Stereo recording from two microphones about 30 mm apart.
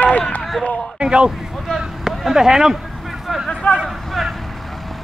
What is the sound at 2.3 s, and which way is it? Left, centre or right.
Speech, centre.